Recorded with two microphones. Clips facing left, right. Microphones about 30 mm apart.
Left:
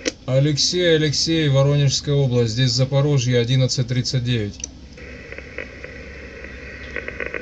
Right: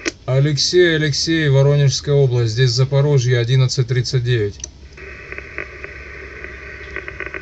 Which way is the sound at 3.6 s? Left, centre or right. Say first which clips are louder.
Right 2 dB; right.